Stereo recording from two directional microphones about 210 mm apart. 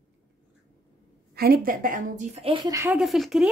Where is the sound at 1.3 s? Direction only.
45° right (ahead or behind); by 3.0 s 15° right (ahead or behind).